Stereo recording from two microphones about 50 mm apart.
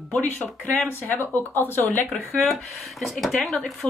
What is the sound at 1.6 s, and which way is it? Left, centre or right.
Speech, left.